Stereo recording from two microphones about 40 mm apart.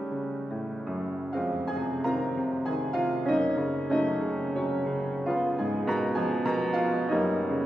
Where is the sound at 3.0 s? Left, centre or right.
Centre.